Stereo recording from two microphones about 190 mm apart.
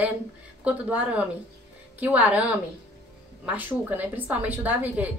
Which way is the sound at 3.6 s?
10° right (ahead or behind).